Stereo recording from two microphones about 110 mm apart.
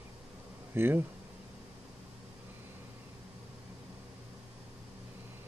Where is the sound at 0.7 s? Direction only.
20° right (ahead or behind).